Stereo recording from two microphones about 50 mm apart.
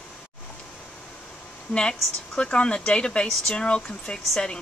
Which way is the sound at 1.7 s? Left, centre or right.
Centre.